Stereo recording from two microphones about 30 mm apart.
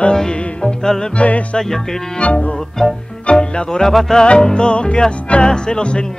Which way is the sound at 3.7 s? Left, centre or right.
Centre.